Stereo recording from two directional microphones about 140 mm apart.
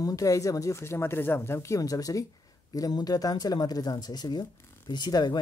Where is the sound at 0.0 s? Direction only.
25° left (ahead or behind).